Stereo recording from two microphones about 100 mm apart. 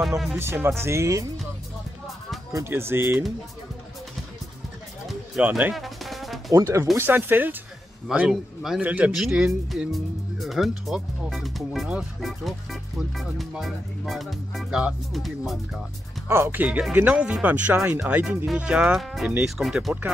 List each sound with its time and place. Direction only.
0.4 s speech: 25° right (ahead or behind)
2.5 s speech: 25° right (ahead or behind)
5.5 s music: 5° right (ahead or behind)
6.5 s speech: 30° right (ahead or behind)
8.1 s speech: 5° right (ahead or behind)
8.8 s speech: 15° right (ahead or behind)
9.1 s speech: 5° right (ahead or behind)
16.3 s speech: 25° right (ahead or behind)
16.6 s speech: 10° right (ahead or behind)